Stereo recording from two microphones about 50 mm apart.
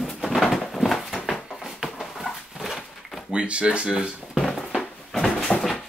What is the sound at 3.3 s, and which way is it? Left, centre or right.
Speech, right.